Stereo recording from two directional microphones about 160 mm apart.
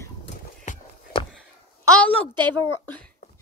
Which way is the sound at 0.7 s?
50° left (ahead or behind).